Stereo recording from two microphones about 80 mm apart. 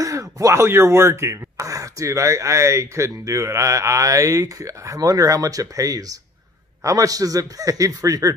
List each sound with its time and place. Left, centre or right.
0.0 s a man's voice: right